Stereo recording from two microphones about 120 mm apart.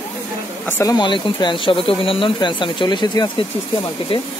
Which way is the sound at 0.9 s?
40° left (ahead or behind).